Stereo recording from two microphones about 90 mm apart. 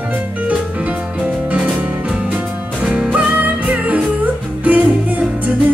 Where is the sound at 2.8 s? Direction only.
10° right (ahead or behind).